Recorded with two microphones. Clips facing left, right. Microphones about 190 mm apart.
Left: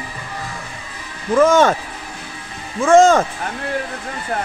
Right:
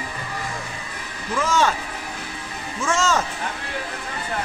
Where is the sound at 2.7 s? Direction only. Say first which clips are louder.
Left 11 dB; 55° left (ahead or behind).